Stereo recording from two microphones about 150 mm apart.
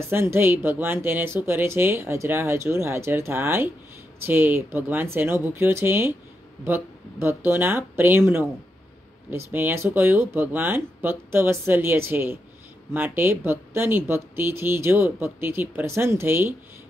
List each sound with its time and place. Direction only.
0.0 s speech: 15° right (ahead or behind)
7.2 s speech: 15° right (ahead or behind)